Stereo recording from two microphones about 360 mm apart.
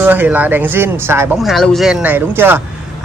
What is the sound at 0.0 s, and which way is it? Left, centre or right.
Speech, centre.